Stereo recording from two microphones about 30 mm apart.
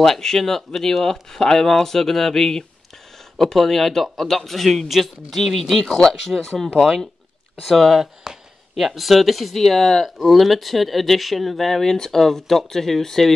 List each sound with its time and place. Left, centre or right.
0.0 s speech: centre
5.4 s speech: centre
6.3 s speech: right
7.6 s speech: centre
8.0 s speech: centre